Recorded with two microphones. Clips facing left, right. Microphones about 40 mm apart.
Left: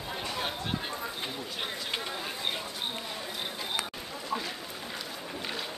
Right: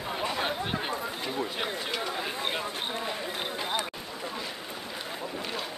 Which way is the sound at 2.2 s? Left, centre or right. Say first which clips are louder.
Right 3 dB; right.